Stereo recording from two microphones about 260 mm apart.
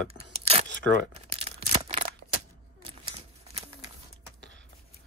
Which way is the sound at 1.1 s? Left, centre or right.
Right.